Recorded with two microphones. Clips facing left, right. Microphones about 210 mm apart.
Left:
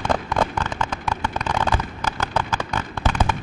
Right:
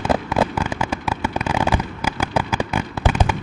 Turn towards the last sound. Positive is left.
turn(degrees=-10)  # may be behind; listen again after turning